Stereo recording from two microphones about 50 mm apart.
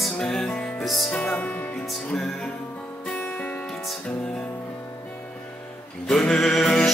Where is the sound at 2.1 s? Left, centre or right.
Centre.